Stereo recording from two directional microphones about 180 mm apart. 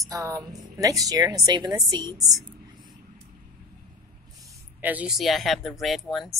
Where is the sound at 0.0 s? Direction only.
20° right (ahead or behind).